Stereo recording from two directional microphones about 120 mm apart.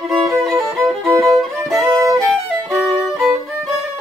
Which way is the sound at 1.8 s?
25° right (ahead or behind).